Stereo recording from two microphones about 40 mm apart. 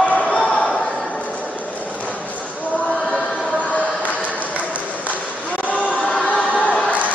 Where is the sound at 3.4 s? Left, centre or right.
Left.